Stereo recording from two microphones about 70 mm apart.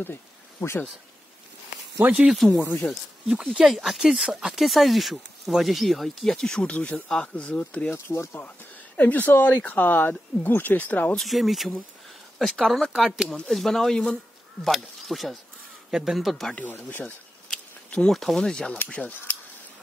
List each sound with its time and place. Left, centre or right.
0.0 s a sound: left
2.0 s speech: right
2.3 s speech: centre
2.6 s speech: left
3.5 s speech: centre
7.9 s speech: left
8.4 s speech: left
11.1 s speech: centre
17.0 s a sound: centre
18.1 s speech: centre
18.7 s speech: left